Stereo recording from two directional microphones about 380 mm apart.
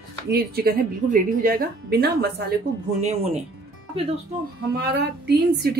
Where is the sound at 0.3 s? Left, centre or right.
Right.